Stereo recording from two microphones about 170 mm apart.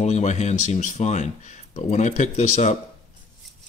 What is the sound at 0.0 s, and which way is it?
Speech, 45° left (ahead or behind).